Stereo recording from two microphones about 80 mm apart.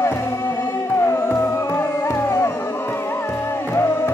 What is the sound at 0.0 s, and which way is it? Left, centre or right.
Music, left.